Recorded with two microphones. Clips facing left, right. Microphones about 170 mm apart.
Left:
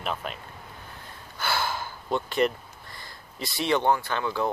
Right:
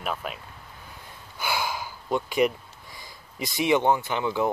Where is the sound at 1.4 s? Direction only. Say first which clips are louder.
Even; 10° right (ahead or behind).